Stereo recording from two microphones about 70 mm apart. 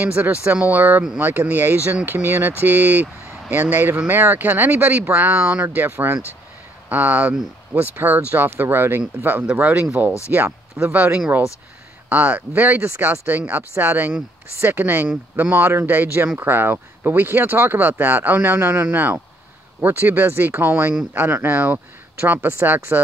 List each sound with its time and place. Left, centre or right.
0.0 s speech: right